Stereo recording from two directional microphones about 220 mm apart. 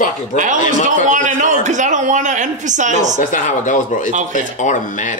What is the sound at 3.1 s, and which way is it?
Speech, 35° left (ahead or behind).